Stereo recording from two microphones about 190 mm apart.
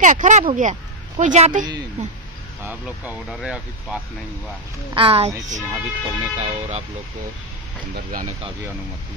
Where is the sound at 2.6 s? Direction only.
10° right (ahead or behind).